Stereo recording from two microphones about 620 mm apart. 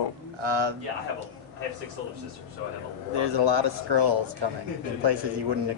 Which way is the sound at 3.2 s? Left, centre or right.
Right.